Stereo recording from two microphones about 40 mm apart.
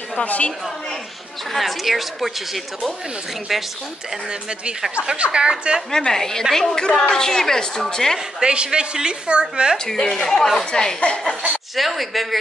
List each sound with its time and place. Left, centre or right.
0.2 s a woman's voice: left
1.5 s a woman's voice: centre
5.1 s a woman's voice: right
5.9 s a woman's voice: centre
8.4 s a woman's voice: centre
9.9 s a woman's voice: centre
11.7 s a woman's voice: centre